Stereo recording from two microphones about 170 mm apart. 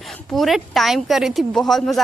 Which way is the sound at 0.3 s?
Centre (ahead or behind).